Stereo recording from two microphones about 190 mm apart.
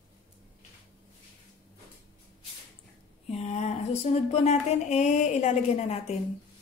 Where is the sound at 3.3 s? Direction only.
35° left (ahead or behind).